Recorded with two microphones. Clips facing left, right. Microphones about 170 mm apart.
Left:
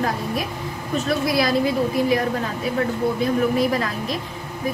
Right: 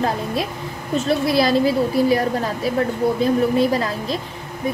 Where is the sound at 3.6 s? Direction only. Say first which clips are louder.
Right 2 dB; 30° right (ahead or behind).